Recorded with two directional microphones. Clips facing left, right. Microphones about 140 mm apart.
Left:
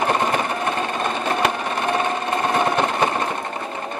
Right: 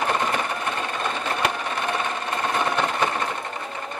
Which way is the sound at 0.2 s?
35° left (ahead or behind).